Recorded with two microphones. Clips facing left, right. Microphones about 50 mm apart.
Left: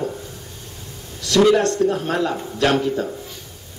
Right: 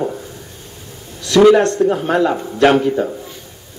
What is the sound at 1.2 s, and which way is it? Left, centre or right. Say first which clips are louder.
Speech: right 5 dB; right.